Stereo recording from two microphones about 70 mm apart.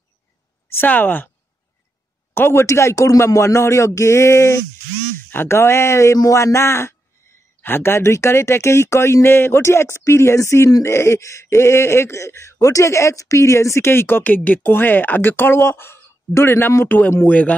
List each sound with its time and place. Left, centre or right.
0.7 s speech: left
2.3 s a man's voice: left